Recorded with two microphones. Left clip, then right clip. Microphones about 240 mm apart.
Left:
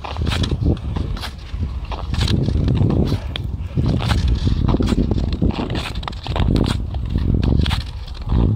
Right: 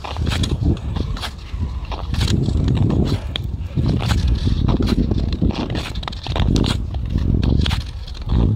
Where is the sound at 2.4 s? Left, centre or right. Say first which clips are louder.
Even; centre.